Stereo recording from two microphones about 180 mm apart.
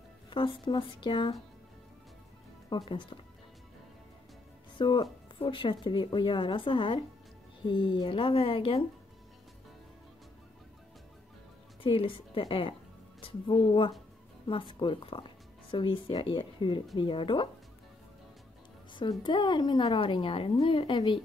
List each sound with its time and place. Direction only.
0.3 s speech: 25° left (ahead or behind)
2.7 s speech: 25° left (ahead or behind)
4.7 s speech: 25° left (ahead or behind)
11.8 s speech: 30° left (ahead or behind)
18.9 s speech: 25° left (ahead or behind)